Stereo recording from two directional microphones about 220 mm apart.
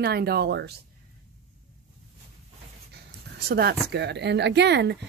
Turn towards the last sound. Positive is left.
turn(degrees=-50)  # may be behind; listen again after turning